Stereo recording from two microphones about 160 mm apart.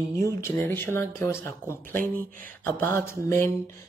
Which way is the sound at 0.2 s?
15° left (ahead or behind).